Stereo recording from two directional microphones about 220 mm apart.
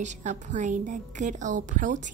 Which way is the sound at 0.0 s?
35° right (ahead or behind).